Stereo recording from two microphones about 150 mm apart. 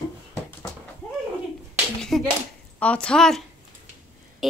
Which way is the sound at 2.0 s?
5° left (ahead or behind).